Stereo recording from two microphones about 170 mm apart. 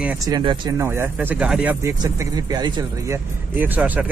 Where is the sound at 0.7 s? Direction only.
15° right (ahead or behind).